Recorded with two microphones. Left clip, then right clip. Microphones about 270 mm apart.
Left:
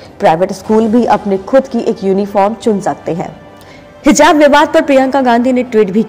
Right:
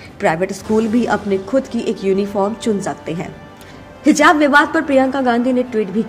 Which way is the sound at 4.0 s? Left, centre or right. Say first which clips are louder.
Left 5 dB; left.